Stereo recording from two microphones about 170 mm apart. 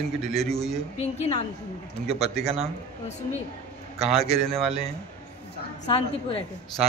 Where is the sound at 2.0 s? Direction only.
40° right (ahead or behind).